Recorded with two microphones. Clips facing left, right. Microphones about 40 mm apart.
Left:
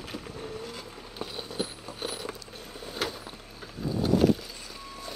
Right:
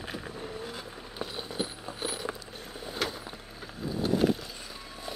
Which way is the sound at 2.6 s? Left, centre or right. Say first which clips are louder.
Right 1 dB; centre.